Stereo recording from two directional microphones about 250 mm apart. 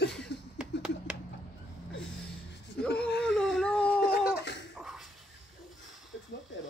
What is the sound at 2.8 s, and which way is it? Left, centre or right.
Whimper, centre.